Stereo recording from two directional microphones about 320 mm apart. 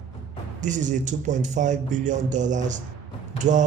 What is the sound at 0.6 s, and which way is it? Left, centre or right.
A man's voice, right.